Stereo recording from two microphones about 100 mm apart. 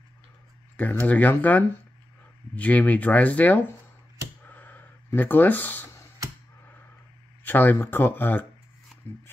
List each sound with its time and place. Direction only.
0.7 s speech: 15° left (ahead or behind)
4.5 s a sound: 20° left (ahead or behind)
7.4 s speech: 20° left (ahead or behind)